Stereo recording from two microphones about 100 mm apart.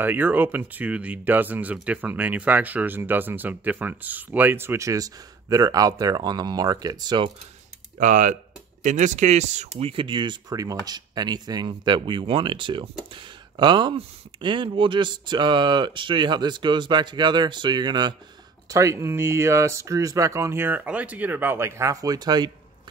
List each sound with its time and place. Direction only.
0.0 s speech: 20° right (ahead or behind); by 7.2 s 45° right (ahead or behind)
9.8 s speech: 65° right (ahead or behind)
10.5 s speech: 35° right (ahead or behind)
18.7 s speech: 30° right (ahead or behind)